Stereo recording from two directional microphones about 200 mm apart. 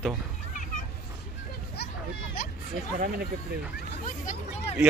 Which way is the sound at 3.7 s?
40° left (ahead or behind).